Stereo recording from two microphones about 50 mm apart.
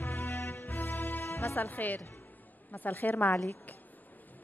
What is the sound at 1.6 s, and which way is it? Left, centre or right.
A woman's voice, left.